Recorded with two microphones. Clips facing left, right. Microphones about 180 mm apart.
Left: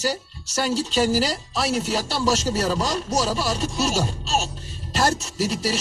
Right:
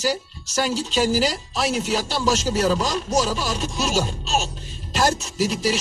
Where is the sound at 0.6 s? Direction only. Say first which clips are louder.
Even; centre (ahead or behind).